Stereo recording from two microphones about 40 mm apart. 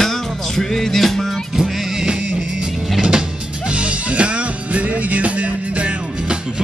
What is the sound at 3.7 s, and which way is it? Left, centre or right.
Music, right.